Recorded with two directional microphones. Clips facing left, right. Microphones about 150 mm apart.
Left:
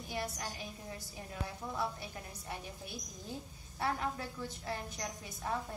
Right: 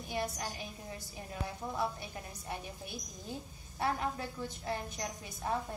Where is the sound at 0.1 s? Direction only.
20° right (ahead or behind).